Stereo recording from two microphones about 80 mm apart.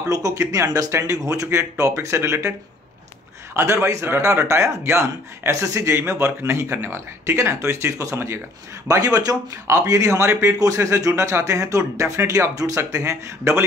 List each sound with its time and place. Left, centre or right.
0.1 s speech: right
3.5 s a man's voice: right